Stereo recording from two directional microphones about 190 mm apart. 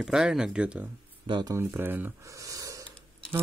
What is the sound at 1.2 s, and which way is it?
Speech, 20° right (ahead or behind).